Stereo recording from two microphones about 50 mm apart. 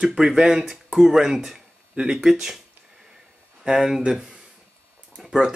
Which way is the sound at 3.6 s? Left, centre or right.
Centre.